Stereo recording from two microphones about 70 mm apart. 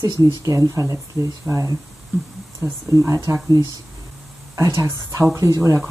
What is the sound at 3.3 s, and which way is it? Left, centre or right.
Speech, right.